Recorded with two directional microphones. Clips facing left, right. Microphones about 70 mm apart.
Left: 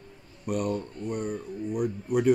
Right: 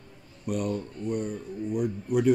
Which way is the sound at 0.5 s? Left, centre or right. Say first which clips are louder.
Left 1 dB; left.